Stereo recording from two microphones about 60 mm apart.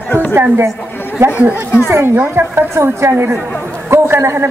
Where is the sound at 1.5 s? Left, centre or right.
Left.